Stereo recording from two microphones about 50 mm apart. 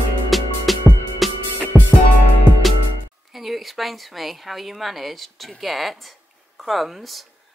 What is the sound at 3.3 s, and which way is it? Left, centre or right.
Speech, centre.